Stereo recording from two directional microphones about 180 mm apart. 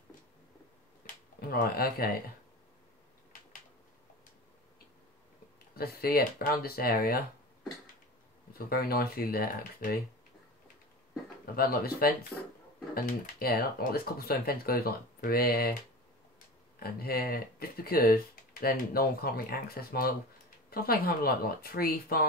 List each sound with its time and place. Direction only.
1.0 s a sound: 50° left (ahead or behind)
1.4 s speech: 55° left (ahead or behind)
5.8 s speech: 55° left (ahead or behind)
8.5 s speech: 55° left (ahead or behind)
11.5 s speech: 55° left (ahead or behind)
12.3 s speech: 10° left (ahead or behind)
12.9 s speech: 55° left (ahead or behind)
16.8 s speech: 55° left (ahead or behind)